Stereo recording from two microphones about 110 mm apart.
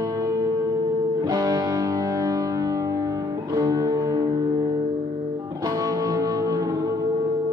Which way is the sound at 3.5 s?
30° right (ahead or behind).